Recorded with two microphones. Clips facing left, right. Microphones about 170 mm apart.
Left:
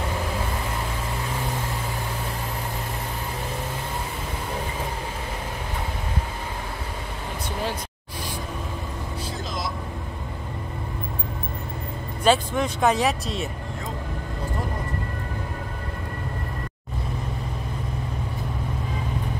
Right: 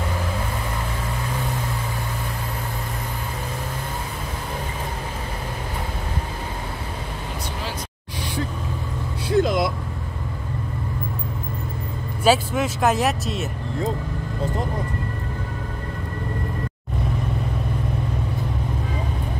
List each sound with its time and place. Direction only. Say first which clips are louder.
9.3 s vehicle: right 16 dB; 60° right (ahead or behind)
12.2 s speech: right 2 dB; 5° right (ahead or behind)